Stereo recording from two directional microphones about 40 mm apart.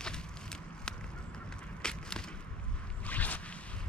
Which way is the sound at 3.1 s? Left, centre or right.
Left.